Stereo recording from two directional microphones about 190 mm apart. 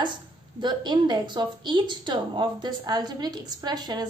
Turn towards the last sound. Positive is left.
turn(degrees=-20)  # may be behind; listen again after turning